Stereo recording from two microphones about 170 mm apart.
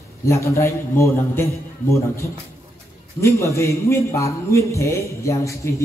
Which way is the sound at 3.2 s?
15° left (ahead or behind).